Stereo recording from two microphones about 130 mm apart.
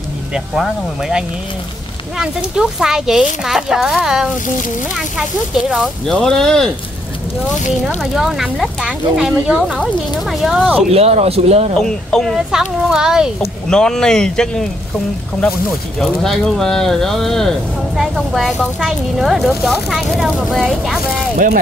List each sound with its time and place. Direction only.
0.3 s speech: 5° right (ahead or behind)
5.7 s speech: centre (ahead or behind)
8.1 s speech: 5° right (ahead or behind)
10.9 s speech: 55° right (ahead or behind)
11.8 s speech: 5° left (ahead or behind)
16.0 s speech: 5° left (ahead or behind)